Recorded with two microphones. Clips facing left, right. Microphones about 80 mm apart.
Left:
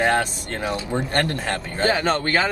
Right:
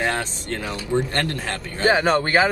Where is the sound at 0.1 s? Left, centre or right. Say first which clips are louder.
Left 4 dB; left.